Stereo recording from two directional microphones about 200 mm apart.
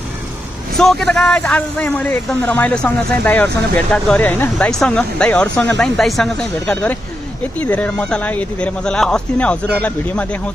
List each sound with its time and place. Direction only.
0.7 s a man's voice: centre (ahead or behind)